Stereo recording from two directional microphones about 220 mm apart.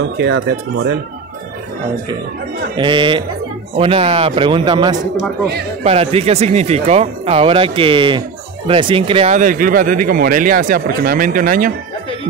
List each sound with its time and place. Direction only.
0.0 s speech: 50° right (ahead or behind)
2.7 s speech: 20° right (ahead or behind); by 11.7 s 40° right (ahead or behind)